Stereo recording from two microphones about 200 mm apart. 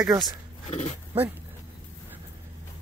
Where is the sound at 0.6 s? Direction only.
35° left (ahead or behind).